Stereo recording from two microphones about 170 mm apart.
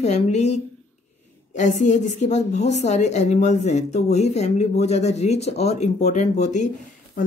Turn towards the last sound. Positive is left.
turn(degrees=45)  # may be behind; listen again after turning